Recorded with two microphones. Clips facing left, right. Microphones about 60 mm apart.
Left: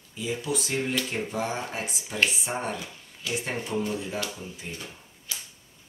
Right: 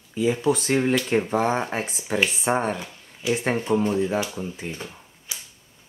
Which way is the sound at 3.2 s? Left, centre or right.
Right.